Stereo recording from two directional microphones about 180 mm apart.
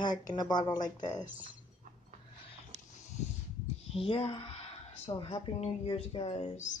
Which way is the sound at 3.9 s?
35° left (ahead or behind).